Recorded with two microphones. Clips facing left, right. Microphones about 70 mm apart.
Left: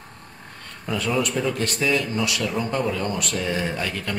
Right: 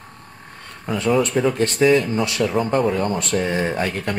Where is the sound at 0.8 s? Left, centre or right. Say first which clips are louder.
Right 5 dB; right.